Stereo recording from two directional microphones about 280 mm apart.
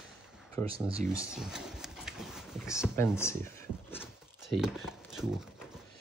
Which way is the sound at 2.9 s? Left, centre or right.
Centre.